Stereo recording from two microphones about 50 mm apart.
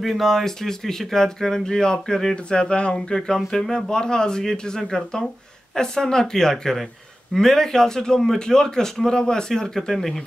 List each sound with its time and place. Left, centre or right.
0.0 s a man's voice: centre
3.3 s a man's voice: centre